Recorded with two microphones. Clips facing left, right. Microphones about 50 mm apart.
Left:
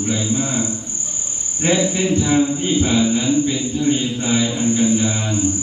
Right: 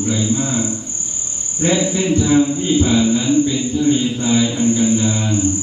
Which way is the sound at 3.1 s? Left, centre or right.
Centre.